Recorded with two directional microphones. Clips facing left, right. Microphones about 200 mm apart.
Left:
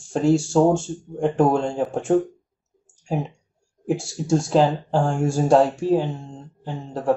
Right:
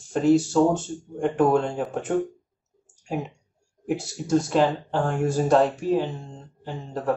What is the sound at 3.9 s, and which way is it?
Speech, 30° left (ahead or behind).